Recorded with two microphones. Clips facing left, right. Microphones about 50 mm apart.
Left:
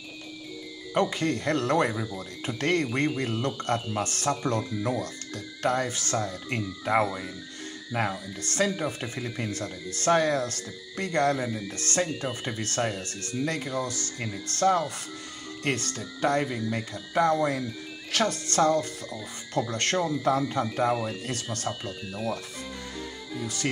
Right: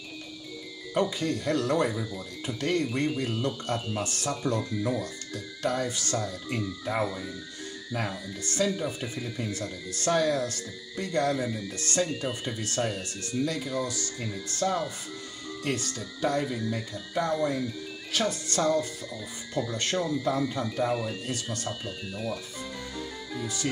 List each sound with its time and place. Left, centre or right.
0.9 s speech: left
2.6 s speech: left
5.9 s speech: left
16.7 s speech: left
18.1 s speech: left
19.7 s speech: left
22.1 s speech: centre